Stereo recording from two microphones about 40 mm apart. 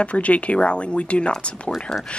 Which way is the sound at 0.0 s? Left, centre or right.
Left.